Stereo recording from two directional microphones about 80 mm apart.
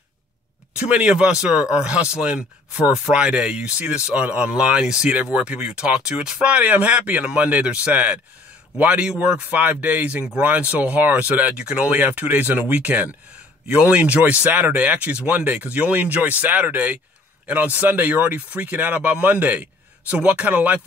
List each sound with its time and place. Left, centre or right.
0.7 s speech: centre